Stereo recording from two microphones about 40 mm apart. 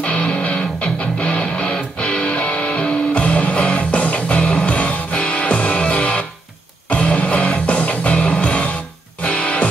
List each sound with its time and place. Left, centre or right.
0.4 s music: left